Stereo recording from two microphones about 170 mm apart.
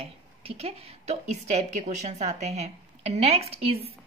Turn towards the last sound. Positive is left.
turn(degrees=-35)  # may be behind; listen again after turning